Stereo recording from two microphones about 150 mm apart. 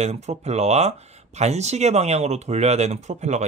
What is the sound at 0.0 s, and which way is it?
Speech, 45° right (ahead or behind).